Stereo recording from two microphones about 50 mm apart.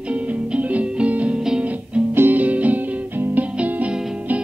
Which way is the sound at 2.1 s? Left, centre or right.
Right.